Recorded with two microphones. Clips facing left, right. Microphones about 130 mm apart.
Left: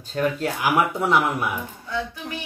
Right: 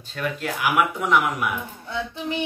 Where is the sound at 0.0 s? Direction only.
40° left (ahead or behind).